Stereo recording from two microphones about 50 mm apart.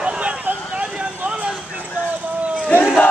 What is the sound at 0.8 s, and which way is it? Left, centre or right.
Vehicle, right.